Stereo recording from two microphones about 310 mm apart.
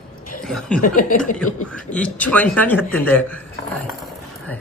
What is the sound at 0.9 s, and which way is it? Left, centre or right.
Speech, left.